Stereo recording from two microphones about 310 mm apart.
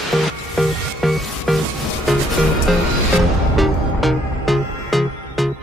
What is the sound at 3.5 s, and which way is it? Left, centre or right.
Music, centre.